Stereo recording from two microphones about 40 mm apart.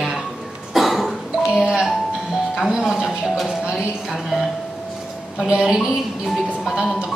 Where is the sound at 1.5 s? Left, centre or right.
Centre.